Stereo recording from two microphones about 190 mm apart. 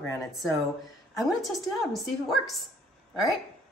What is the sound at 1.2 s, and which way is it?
A woman's voice, centre (ahead or behind).